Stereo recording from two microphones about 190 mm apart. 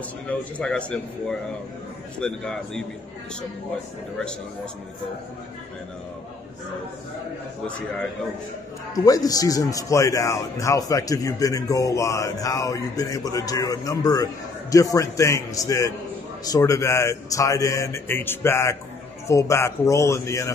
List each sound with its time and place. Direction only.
0.3 s speech: 5° left (ahead or behind)
8.9 s a man's voice: 20° left (ahead or behind)